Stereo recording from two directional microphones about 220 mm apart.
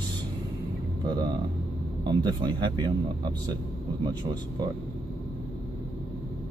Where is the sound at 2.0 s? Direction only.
20° right (ahead or behind).